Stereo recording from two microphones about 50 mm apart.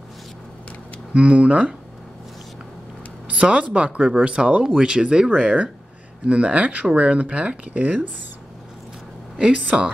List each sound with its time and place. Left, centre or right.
1.1 s speech: right
3.3 s speech: right
9.4 s speech: right